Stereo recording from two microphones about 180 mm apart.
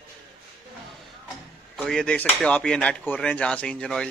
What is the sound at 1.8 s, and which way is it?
Speech, 5° left (ahead or behind).